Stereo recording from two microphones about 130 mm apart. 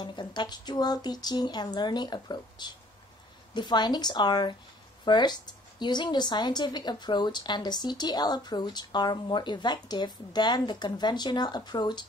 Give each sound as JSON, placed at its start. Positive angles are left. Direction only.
{"t": 0.0, "sound": "a woman's voice", "side_deg": 35}